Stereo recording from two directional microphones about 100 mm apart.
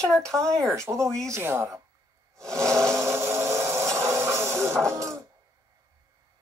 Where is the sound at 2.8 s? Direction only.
30° right (ahead or behind).